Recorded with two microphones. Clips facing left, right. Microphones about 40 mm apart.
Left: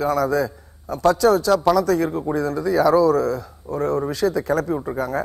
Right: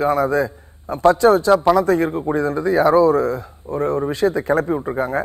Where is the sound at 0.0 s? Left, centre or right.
Right.